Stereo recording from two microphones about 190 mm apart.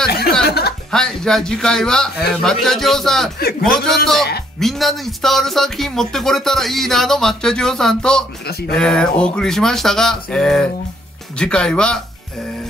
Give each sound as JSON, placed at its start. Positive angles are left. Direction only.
{"t": 0.5, "sound": "chuckle", "side_deg": 55}
{"t": 0.9, "sound": "speech", "side_deg": 5}
{"t": 3.3, "sound": "a man's voice", "side_deg": 55}
{"t": 4.0, "sound": "speech", "side_deg": 0}
{"t": 8.5, "sound": "speech", "side_deg": 55}
{"t": 8.7, "sound": "speech", "side_deg": 5}